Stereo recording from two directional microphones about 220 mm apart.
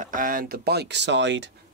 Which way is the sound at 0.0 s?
40° right (ahead or behind).